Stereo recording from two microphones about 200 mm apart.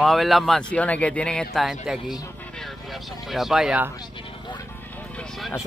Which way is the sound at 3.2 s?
Centre (ahead or behind).